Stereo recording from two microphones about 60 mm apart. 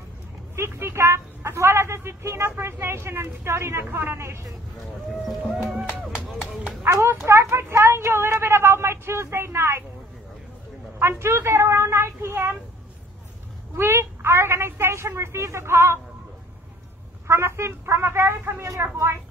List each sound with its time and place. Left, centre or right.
0.6 s speech: right
5.2 s speech: centre
6.9 s speech: right
7.2 s a sound: right
11.0 s speech: right
13.7 s speech: right
17.3 s speech: right